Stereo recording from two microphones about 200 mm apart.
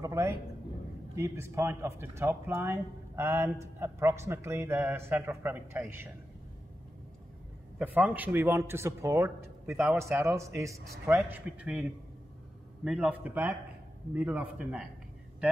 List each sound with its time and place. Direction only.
0.0 s a man's voice: 15° right (ahead or behind)
7.8 s a man's voice: 10° right (ahead or behind)